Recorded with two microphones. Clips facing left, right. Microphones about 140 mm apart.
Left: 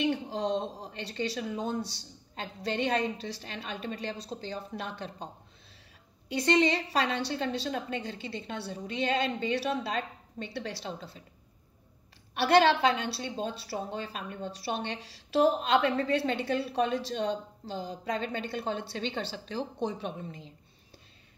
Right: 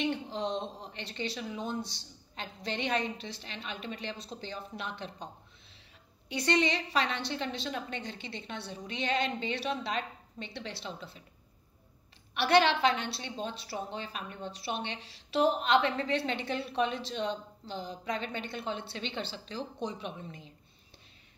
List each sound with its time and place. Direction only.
0.1 s a woman's voice: 40° left (ahead or behind)
6.4 s a woman's voice: 35° left (ahead or behind)
12.5 s a woman's voice: 40° left (ahead or behind)